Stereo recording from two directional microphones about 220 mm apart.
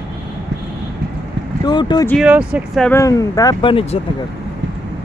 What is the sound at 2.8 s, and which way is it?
Speech, 15° left (ahead or behind).